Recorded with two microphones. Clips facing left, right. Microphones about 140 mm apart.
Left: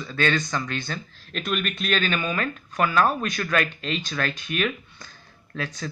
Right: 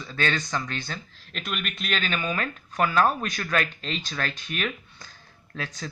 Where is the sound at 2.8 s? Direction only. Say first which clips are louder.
Left 1 dB; 35° right (ahead or behind).